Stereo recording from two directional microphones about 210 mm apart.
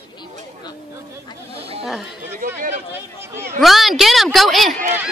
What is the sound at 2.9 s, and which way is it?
Speech, 10° right (ahead or behind).